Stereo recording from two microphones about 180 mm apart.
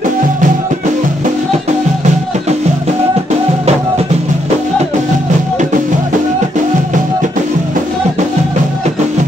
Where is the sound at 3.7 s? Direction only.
35° right (ahead or behind).